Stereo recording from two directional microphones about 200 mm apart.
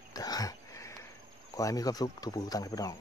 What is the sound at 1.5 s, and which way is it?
Speech, 15° left (ahead or behind).